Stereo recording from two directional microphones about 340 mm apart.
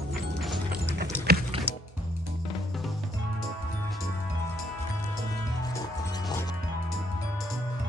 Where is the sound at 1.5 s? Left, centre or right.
Centre.